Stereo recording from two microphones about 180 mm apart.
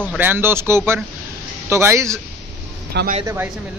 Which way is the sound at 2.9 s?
70° right (ahead or behind).